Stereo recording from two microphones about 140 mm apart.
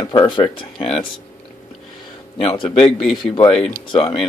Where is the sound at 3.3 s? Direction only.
40° left (ahead or behind).